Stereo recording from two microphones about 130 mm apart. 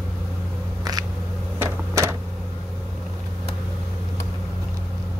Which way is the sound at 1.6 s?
20° right (ahead or behind).